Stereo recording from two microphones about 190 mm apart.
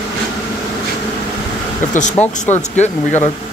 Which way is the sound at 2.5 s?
35° left (ahead or behind).